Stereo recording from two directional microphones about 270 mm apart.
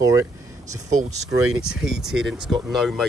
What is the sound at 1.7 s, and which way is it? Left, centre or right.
Speech, centre.